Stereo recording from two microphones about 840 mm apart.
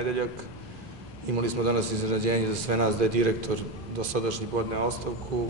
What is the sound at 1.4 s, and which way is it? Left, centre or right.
A man's voice, right.